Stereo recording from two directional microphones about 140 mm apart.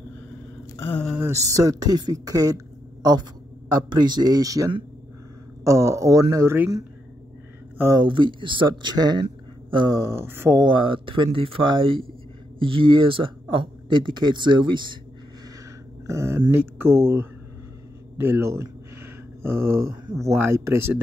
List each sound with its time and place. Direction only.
0.7 s speech: 15° left (ahead or behind)
1.2 s speech: 20° right (ahead or behind)
7.7 s a sound: 20° right (ahead or behind)
8.0 s speech: 35° right (ahead or behind)
9.9 s speech: 20° right (ahead or behind)
10.6 s speech: 35° right (ahead or behind)
16.1 s a sound: 20° right (ahead or behind)
18.2 s speech: 15° right (ahead or behind)
19.4 s a sound: 15° right (ahead or behind)
20.1 s speech: 20° right (ahead or behind)